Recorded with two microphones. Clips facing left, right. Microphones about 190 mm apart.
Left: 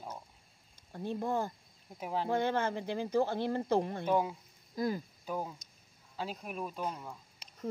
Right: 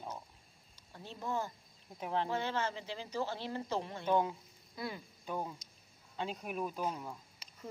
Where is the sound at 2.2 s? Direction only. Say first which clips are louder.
Left 5 dB; 55° left (ahead or behind).